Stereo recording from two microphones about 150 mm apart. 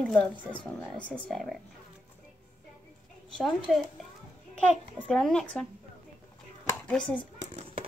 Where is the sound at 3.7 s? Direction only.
5° right (ahead or behind).